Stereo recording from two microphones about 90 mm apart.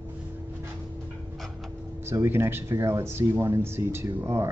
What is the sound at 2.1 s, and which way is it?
Speech, 25° right (ahead or behind).